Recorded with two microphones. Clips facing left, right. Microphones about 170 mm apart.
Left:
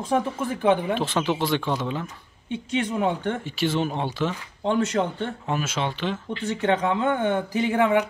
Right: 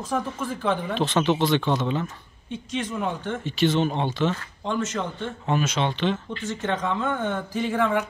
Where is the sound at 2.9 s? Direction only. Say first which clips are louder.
Left 4 dB; 20° left (ahead or behind).